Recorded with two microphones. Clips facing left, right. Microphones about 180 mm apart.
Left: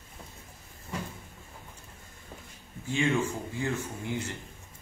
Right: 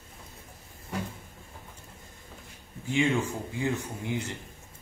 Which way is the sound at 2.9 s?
15° right (ahead or behind).